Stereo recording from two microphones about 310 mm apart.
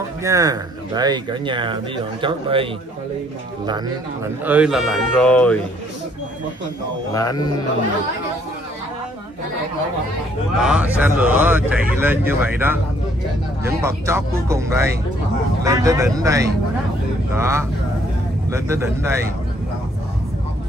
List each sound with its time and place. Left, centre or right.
0.2 s speech: centre
7.2 s a man's voice: centre
10.6 s speech: centre